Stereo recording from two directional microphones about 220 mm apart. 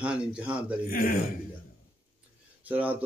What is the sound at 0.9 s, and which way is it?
Speech, 40° left (ahead or behind).